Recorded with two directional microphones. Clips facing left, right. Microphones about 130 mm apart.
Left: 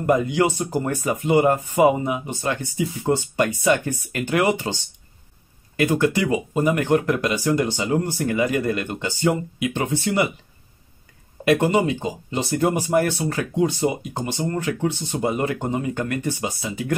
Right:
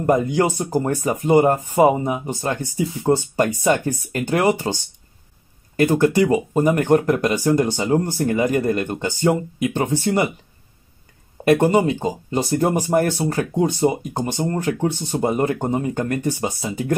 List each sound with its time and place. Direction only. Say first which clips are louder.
0.0 s speech: right 1 dB; 40° right (ahead or behind)
5.8 s speech: right 4 dB; 45° right (ahead or behind)
11.4 s speech: right 3 dB; 45° right (ahead or behind)